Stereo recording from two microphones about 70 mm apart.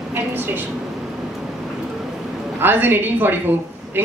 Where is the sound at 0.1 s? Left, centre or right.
Right.